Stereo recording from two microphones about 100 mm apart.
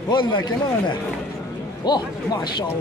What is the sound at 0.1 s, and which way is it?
Speech, 50° left (ahead or behind).